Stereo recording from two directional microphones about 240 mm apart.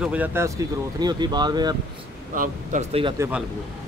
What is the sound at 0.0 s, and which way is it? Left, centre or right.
A man's voice, centre.